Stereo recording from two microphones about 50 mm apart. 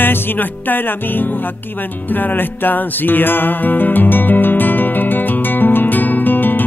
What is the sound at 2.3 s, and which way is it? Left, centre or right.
Music, left.